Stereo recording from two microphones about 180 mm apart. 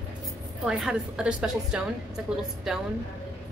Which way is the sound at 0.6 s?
5° right (ahead or behind).